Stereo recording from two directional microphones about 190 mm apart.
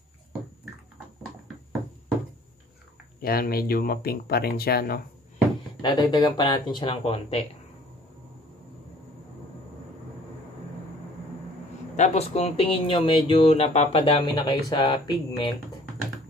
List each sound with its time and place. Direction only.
3.2 s speech: 50° left (ahead or behind)
5.8 s speech: 20° left (ahead or behind)
12.0 s speech: 35° left (ahead or behind)